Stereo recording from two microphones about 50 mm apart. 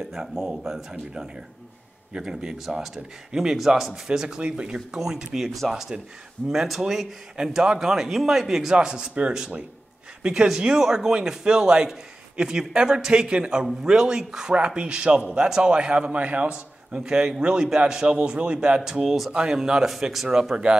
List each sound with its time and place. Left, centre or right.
0.0 s a man's voice: centre
18.9 s speech: centre
19.3 s speech: centre
19.9 s speech: centre